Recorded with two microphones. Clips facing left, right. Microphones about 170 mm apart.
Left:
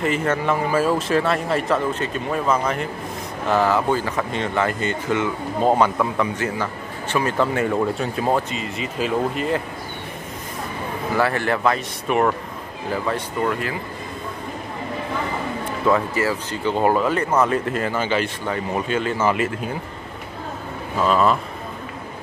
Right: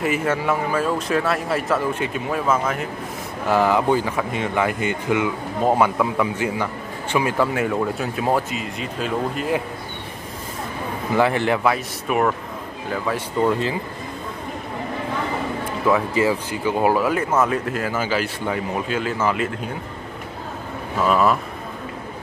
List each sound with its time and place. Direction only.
0.0 s speech: 10° right (ahead or behind)
3.4 s speech: 15° right (ahead or behind)
11.1 s speech: 15° right (ahead or behind); by 13.2 s centre (ahead or behind)
13.4 s speech: 25° right (ahead or behind)
15.9 s speech: 15° right (ahead or behind); by 19.7 s 5° left (ahead or behind)
21.0 s speech: 5° right (ahead or behind)